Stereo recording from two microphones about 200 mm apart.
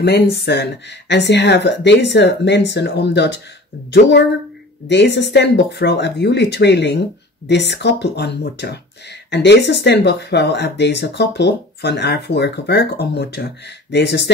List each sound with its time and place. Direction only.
0.0 s speech: 55° left (ahead or behind)
4.8 s speech: 60° left (ahead or behind)